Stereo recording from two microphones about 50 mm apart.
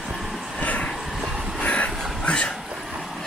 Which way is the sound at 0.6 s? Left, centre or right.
Left.